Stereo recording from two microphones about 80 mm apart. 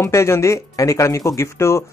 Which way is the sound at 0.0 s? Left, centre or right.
Left.